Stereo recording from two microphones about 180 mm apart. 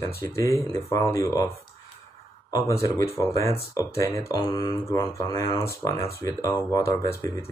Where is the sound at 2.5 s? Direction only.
15° left (ahead or behind).